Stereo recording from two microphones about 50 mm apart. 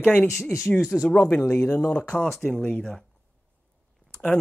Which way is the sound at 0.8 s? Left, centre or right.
Centre.